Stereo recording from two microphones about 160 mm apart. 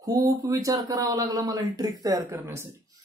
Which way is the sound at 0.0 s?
20° right (ahead or behind).